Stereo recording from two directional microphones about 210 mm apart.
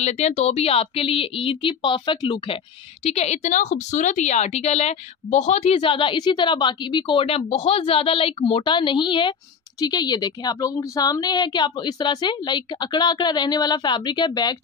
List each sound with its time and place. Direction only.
0.0 s speech: 30° left (ahead or behind)